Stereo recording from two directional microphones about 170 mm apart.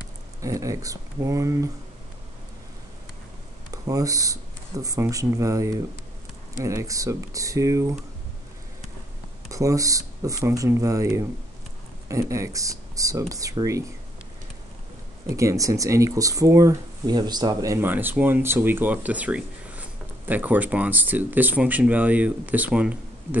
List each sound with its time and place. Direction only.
0.4 s speech: 20° right (ahead or behind)
3.7 s speech: 20° right (ahead or behind)
9.5 s speech: 20° right (ahead or behind)
15.2 s speech: 20° right (ahead or behind)